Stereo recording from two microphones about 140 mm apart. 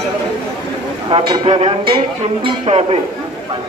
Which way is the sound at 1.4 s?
45° right (ahead or behind).